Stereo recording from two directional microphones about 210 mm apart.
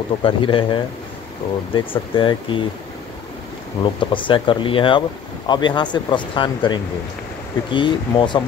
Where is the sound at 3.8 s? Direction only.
25° left (ahead or behind).